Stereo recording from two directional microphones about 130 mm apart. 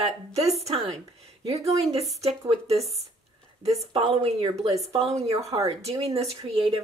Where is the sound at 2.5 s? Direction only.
50° right (ahead or behind).